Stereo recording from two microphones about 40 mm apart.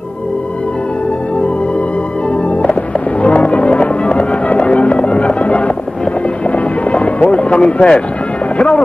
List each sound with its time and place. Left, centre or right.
2.5 s music: left
8.5 s speech: left